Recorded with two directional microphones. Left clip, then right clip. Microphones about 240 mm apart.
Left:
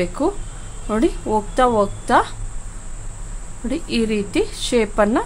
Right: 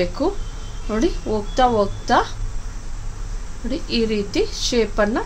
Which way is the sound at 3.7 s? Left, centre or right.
Centre.